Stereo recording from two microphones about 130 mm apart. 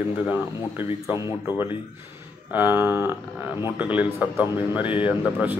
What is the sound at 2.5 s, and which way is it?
Speech, 15° right (ahead or behind).